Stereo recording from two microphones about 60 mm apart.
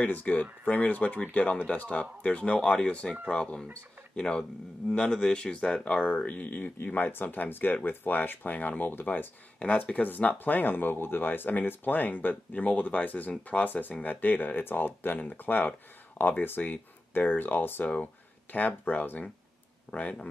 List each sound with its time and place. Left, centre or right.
0.0 s speech: left; by 5.9 s centre
5.9 s speech: left